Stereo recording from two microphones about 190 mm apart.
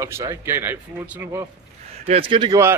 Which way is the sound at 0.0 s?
15° right (ahead or behind).